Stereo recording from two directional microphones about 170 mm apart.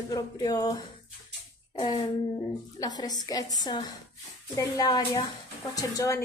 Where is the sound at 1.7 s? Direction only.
25° left (ahead or behind).